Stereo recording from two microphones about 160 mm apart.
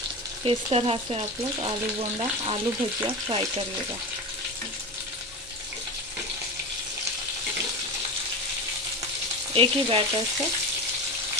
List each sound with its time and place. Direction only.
0.5 s frying: 35° right (ahead or behind)
9.5 s frying: 35° right (ahead or behind)